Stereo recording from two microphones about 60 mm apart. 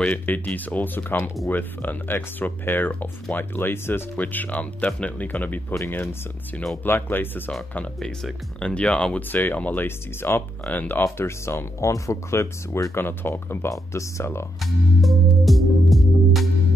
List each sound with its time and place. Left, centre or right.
0.0 s speech: left
4.2 s speech: left
6.8 s speech: left
8.5 s speech: centre
9.3 s speech: left
9.8 s speech: left
10.6 s speech: left
11.1 s speech: left
13.7 s speech: left
14.6 s music: centre